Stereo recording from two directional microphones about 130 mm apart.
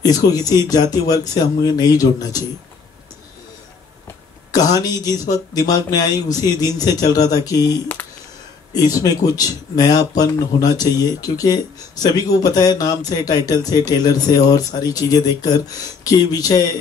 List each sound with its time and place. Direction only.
0.0 s speech: 30° left (ahead or behind)
4.8 s speech: 30° left (ahead or behind)